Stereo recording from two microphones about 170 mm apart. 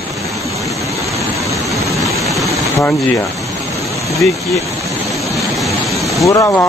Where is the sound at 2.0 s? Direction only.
Centre (ahead or behind).